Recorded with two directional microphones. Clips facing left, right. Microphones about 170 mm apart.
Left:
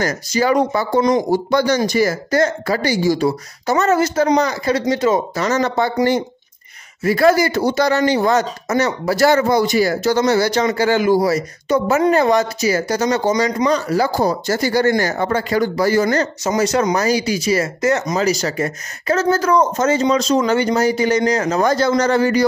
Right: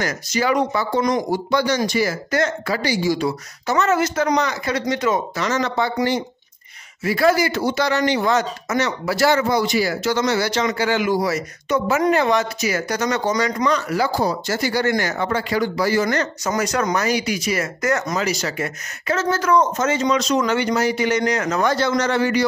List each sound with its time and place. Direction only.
0.0 s speech: 40° left (ahead or behind)
16.4 s speech: 25° left (ahead or behind)
18.1 s speech: 40° left (ahead or behind)